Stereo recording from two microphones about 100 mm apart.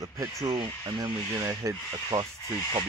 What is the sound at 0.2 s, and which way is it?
Speech, 35° right (ahead or behind).